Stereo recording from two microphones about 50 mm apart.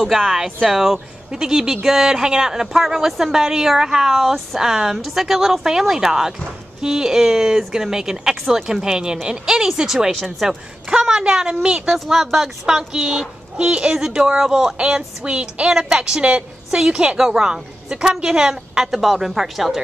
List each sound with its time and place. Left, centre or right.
0.3 s speech: centre
10.9 s a woman's voice: centre
13.9 s a woman's voice: centre